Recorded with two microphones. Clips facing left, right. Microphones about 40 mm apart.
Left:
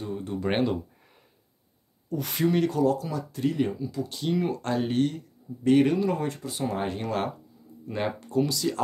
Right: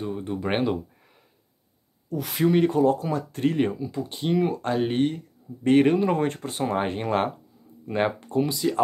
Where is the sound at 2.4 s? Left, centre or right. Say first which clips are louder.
Right 4 dB; right.